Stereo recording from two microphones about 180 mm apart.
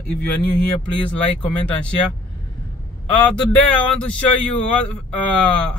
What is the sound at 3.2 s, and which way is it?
Speech, 5° left (ahead or behind).